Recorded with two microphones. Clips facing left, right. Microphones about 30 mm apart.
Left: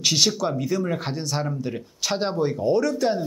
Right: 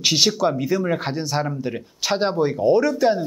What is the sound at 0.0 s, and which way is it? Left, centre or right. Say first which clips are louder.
Speech: right 3 dB; centre.